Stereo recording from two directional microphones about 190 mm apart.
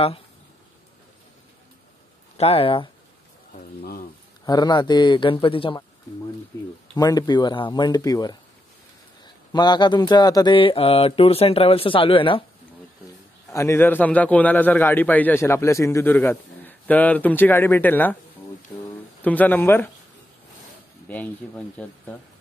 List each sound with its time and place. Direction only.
2.3 s speech: 30° left (ahead or behind)
3.5 s speech: 50° left (ahead or behind)
4.5 s speech: 20° left (ahead or behind)
7.0 s speech: 20° left (ahead or behind)
13.5 s a man's voice: 15° left (ahead or behind)
21.1 s a man's voice: 5° left (ahead or behind)